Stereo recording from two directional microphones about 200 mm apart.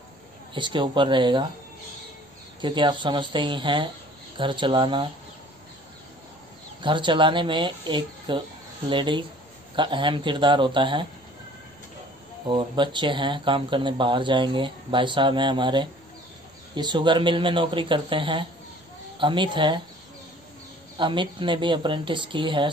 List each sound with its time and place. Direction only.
0.6 s speech: 25° right (ahead or behind)
2.6 s speech: 25° right (ahead or behind)
6.8 s speech: 25° right (ahead or behind)
12.4 s speech: 25° right (ahead or behind)
21.0 s speech: 25° right (ahead or behind)